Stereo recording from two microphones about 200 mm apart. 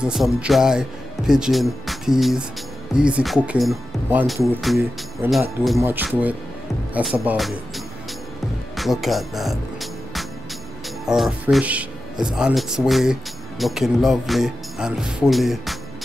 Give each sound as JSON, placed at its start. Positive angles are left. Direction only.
{"t": 0.0, "sound": "speech", "side_deg": -5}
{"t": 8.7, "sound": "music", "side_deg": 0}
{"t": 11.1, "sound": "speech", "side_deg": -5}